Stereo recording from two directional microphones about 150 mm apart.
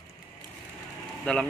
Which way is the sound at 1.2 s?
5° left (ahead or behind).